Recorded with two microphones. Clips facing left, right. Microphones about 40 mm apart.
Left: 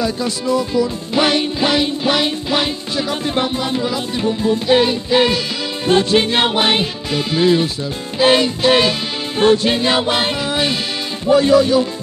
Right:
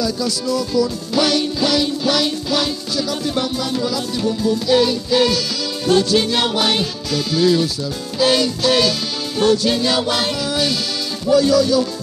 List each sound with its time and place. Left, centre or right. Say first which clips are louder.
0.0 s music: left 1 dB; left